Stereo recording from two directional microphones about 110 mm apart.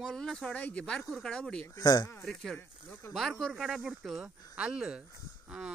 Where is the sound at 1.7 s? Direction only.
35° left (ahead or behind).